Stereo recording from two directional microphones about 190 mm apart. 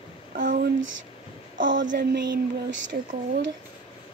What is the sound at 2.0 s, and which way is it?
Child singing, 60° right (ahead or behind).